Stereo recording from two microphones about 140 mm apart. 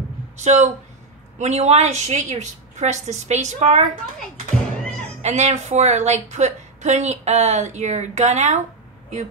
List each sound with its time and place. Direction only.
0.4 s a woman's voice: 55° right (ahead or behind)
5.2 s a woman's voice: 50° right (ahead or behind)